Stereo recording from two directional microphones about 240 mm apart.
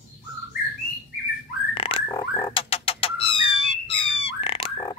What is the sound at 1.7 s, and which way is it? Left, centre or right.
Bird, left.